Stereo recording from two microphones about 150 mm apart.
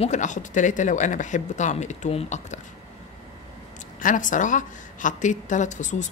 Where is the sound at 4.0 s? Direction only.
60° left (ahead or behind).